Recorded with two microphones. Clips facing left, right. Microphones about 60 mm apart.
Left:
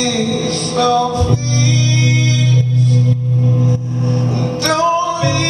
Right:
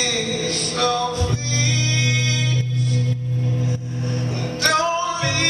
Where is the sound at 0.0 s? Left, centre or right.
Centre.